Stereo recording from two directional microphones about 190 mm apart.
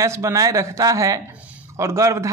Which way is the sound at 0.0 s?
15° right (ahead or behind).